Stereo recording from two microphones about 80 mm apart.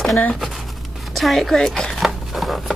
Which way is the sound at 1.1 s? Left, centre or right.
Centre.